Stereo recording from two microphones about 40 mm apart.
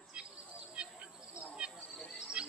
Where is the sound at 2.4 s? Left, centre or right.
Right.